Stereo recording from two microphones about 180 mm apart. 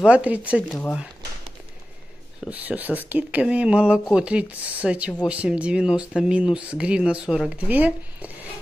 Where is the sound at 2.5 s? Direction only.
10° right (ahead or behind).